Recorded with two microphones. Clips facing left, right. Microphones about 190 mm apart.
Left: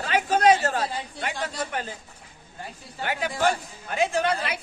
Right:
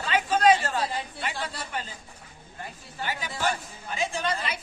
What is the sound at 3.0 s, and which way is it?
A woman's voice, 60° left (ahead or behind).